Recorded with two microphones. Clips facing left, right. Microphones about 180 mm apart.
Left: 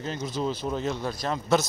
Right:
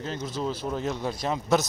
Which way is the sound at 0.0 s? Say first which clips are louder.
Left 1 dB; 5° left (ahead or behind).